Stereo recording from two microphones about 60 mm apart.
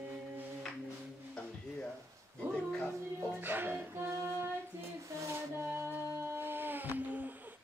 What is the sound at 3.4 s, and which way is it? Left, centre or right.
Music, right.